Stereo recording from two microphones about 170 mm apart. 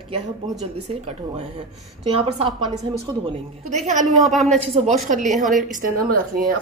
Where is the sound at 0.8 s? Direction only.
40° right (ahead or behind).